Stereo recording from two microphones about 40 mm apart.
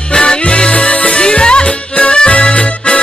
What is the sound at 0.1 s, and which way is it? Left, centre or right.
Music, left.